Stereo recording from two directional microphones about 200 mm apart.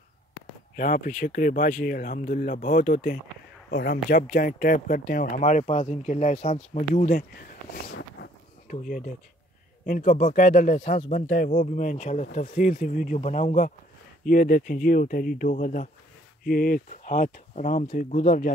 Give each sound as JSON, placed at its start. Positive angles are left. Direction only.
{"t": 0.7, "sound": "speech", "side_deg": 40}